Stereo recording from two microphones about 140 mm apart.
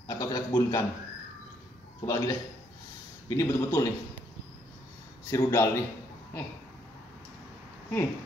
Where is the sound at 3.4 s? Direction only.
20° left (ahead or behind).